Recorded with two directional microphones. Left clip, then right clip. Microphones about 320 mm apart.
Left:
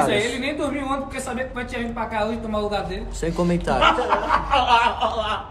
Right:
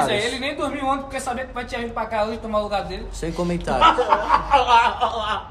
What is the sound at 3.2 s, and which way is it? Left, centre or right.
Speech, centre.